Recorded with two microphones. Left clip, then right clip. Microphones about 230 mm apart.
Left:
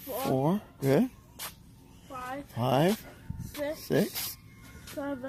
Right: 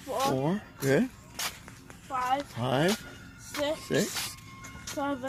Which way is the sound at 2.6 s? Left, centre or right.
Left.